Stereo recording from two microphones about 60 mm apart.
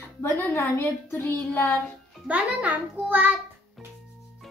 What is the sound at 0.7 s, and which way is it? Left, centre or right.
A woman's voice, left.